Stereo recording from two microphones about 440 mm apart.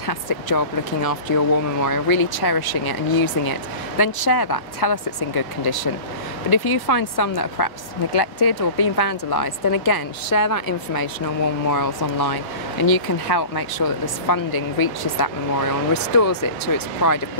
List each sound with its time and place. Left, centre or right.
0.0 s a woman's voice: left